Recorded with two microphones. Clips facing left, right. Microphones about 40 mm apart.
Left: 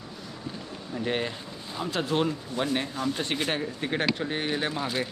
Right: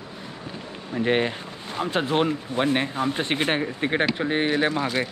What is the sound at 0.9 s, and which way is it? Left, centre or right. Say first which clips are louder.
Speech: right 7 dB; right.